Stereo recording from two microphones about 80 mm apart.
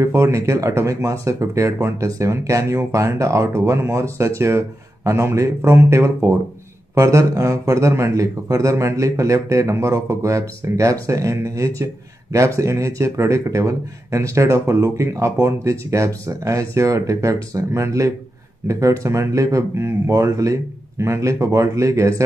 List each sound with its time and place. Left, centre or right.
0.0 s a man's voice: right